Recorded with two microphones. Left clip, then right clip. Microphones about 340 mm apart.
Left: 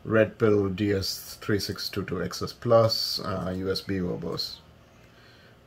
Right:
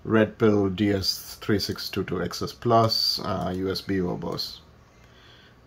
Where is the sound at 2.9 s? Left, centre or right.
Right.